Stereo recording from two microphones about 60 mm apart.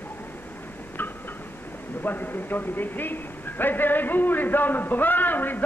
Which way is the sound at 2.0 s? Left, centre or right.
Left.